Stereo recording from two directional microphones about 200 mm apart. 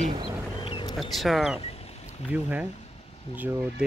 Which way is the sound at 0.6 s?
25° left (ahead or behind).